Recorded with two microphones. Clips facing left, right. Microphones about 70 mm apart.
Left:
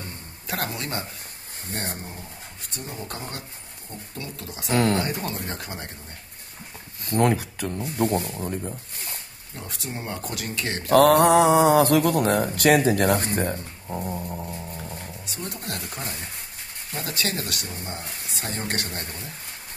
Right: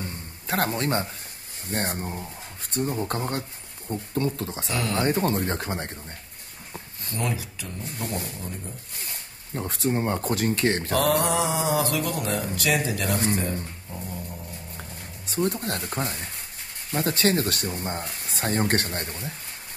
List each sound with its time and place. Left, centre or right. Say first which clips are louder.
0.5 s speech: right 5 dB; right
4.6 s speech: left 6 dB; left
5.0 s speech: right 6 dB; right
7.2 s speech: left 9 dB; left
9.6 s speech: right 9 dB; right
10.9 s speech: left 12 dB; left
14.8 s speech: left 4 dB; right